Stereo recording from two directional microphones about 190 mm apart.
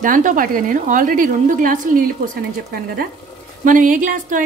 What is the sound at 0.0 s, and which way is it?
A woman's voice, 45° right (ahead or behind).